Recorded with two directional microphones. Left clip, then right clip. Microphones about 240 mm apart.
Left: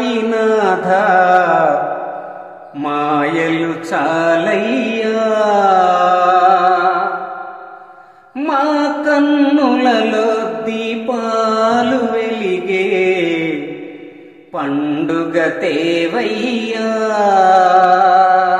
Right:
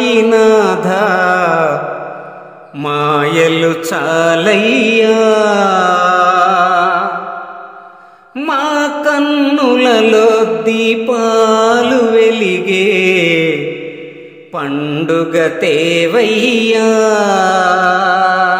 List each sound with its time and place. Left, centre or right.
0.0 s music: right
2.8 s mantra: right
8.4 s music: right
9.6 s mantra: right
14.5 s mantra: right